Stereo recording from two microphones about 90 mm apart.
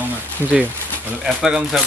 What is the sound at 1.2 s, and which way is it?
Speech, 5° right (ahead or behind).